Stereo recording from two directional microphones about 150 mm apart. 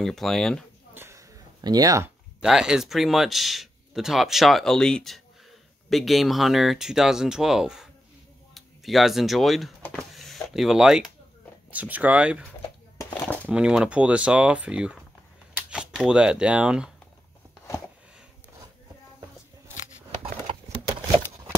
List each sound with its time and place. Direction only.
0.0 s speech: centre (ahead or behind)
0.9 s a sound: 15° right (ahead or behind)
1.6 s speech: 25° right (ahead or behind)
2.4 s speech: 5° right (ahead or behind)
9.8 s power windows: 5° left (ahead or behind)
11.7 s speech: 10° right (ahead or behind)
12.9 s a sound: 10° left (ahead or behind)
13.4 s speech: 5° right (ahead or behind)